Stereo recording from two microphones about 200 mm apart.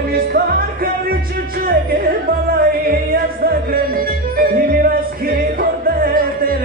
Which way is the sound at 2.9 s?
45° right (ahead or behind).